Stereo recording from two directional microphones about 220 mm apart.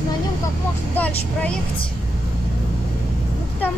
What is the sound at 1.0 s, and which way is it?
Speech, 5° left (ahead or behind).